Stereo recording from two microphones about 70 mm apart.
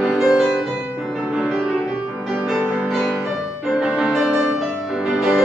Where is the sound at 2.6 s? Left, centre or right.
Right.